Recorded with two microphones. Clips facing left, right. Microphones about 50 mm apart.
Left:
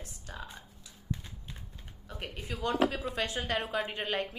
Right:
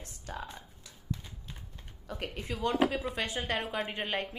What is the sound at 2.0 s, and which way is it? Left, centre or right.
Speech, right.